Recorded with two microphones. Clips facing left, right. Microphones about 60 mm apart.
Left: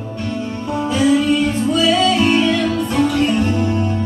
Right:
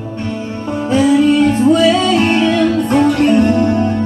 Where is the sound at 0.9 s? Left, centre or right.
Right.